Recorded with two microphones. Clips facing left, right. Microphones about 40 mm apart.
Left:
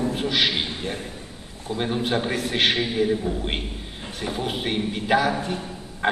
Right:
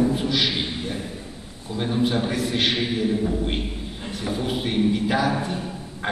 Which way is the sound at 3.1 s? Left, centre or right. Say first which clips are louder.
Right 2 dB; centre.